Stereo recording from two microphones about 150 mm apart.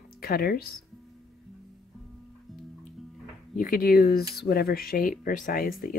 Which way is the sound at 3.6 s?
70° left (ahead or behind).